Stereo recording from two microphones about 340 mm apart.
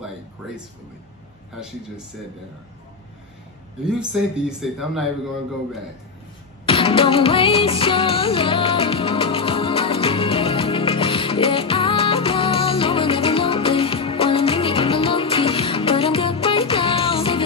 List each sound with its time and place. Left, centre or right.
4.1 s speech: centre
6.6 s music: centre